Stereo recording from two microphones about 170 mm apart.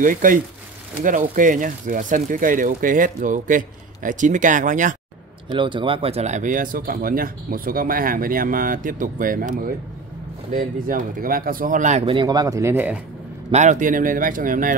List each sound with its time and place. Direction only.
0.0 s speech: 50° right (ahead or behind)
5.5 s speech: 30° right (ahead or behind)
12.2 s speech: 25° right (ahead or behind)
13.5 s speech: 45° right (ahead or behind)